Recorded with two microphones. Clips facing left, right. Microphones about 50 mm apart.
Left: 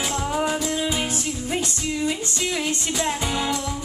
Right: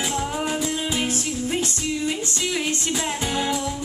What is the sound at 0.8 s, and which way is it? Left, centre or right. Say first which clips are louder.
Music: even; left.